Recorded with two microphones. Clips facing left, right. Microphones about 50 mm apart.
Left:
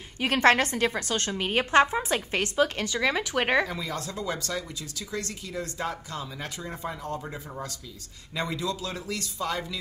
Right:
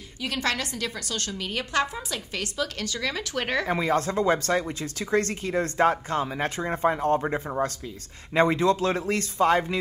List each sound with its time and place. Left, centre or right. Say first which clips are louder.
0.2 s a woman's voice: left 7 dB; left
3.6 s speech: right 9 dB; right